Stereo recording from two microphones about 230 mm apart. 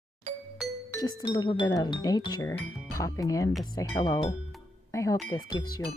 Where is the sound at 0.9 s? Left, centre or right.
Centre.